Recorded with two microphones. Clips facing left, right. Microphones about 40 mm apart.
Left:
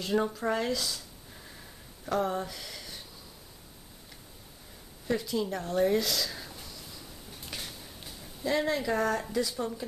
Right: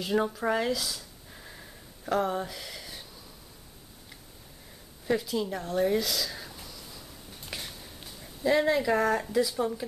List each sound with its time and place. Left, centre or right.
0.0 s speech: centre
2.0 s speech: centre
5.0 s speech: centre
7.4 s a sound: centre
8.5 s speech: centre